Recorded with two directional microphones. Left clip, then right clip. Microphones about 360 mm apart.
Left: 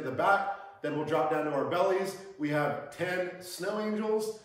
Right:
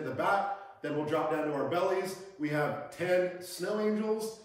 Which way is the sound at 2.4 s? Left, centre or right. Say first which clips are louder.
Left 2 dB; centre.